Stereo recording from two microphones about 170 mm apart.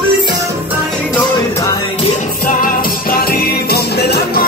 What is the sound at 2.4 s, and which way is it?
Music, 50° left (ahead or behind).